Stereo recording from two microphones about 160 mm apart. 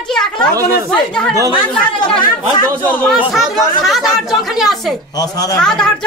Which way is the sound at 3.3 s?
Centre (ahead or behind).